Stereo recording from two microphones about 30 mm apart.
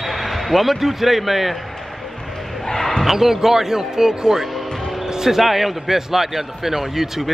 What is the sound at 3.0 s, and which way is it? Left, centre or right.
A man's voice, centre.